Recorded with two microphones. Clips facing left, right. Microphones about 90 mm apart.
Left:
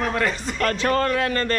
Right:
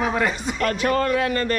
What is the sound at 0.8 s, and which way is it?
Speech, 45° left (ahead or behind).